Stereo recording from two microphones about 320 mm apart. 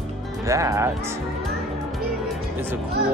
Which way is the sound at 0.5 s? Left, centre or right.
Centre.